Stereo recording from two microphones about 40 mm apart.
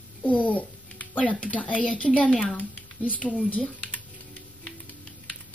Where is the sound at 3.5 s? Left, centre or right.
Left.